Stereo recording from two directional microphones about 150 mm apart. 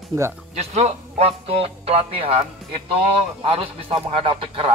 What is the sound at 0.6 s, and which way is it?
Speech, 50° right (ahead or behind).